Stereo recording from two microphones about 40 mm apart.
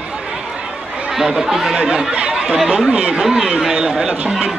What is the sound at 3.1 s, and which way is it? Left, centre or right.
Speech, centre.